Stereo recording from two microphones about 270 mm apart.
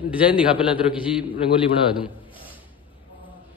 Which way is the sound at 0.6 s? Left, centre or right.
Centre.